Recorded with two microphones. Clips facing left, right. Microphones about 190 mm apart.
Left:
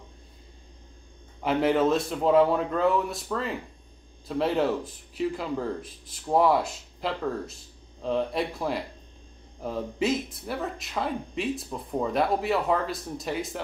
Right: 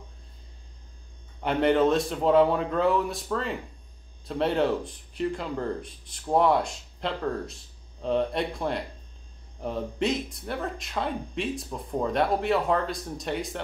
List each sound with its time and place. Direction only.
1.4 s speech: centre (ahead or behind)